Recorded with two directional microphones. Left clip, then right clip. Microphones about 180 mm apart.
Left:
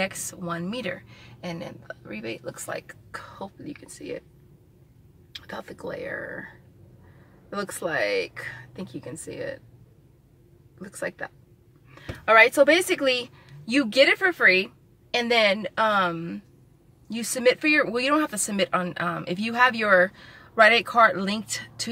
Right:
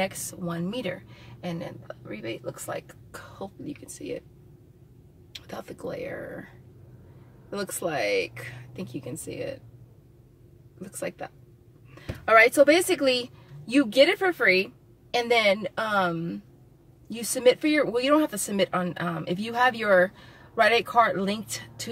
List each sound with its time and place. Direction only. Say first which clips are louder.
0.0 s speech: left 1 dB; 5° left (ahead or behind)
2.9 s speech: left 5 dB; centre (ahead or behind)
5.5 s speech: left 1 dB; 5° right (ahead or behind)
7.4 s speech: left 1 dB; centre (ahead or behind)
10.8 s a woman's voice: left 2 dB; centre (ahead or behind)